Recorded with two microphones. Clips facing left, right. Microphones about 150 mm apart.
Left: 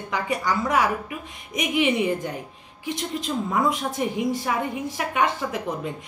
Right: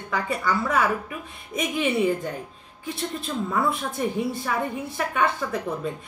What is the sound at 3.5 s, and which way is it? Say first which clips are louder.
A woman's voice: left 2 dB; 15° left (ahead or behind).